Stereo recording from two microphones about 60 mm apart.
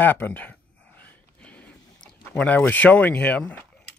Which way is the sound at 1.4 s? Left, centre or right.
Left.